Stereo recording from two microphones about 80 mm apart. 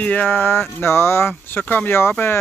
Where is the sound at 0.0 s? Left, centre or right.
Centre.